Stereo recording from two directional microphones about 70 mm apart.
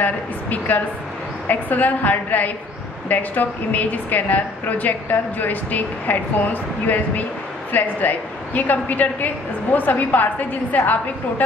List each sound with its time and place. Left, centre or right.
0.0 s a woman's voice: left